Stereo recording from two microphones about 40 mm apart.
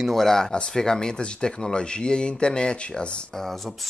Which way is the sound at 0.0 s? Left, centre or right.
Centre.